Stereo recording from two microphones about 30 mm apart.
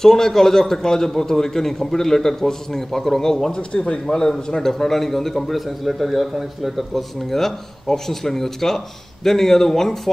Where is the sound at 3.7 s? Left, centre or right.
Left.